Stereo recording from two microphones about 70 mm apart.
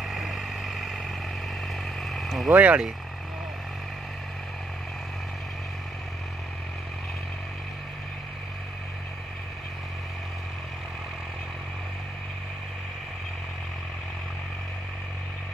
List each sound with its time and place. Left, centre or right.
0.0 s vehicle: centre
2.0 s vehicle: centre
2.5 s speech: right